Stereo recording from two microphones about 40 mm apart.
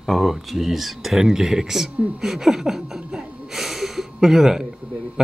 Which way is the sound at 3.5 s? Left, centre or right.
Centre.